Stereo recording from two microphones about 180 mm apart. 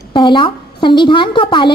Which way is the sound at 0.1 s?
25° left (ahead or behind).